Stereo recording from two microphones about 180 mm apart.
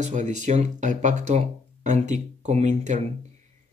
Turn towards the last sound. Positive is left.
turn(degrees=-40)  # may be behind; listen again after turning